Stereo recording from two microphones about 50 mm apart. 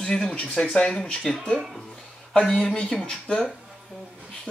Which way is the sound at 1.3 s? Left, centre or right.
Centre.